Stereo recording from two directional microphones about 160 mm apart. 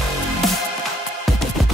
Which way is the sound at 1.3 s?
Centre (ahead or behind).